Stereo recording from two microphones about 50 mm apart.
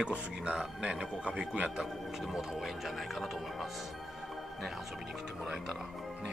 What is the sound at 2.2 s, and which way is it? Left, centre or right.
Speech, centre.